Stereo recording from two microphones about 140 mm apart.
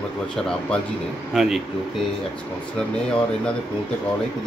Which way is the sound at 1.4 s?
Centre (ahead or behind).